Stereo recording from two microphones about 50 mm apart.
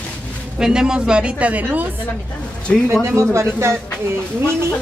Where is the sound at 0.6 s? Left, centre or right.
Centre; by 1.9 s right.